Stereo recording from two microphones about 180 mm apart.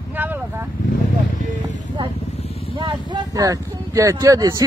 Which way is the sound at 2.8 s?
25° right (ahead or behind).